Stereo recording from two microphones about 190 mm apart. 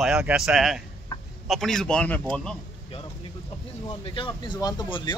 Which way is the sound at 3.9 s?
25° left (ahead or behind).